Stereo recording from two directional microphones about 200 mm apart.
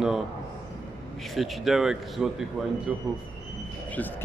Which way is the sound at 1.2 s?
Centre (ahead or behind).